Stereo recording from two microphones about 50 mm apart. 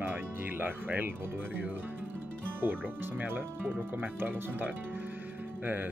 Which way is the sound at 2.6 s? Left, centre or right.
Right.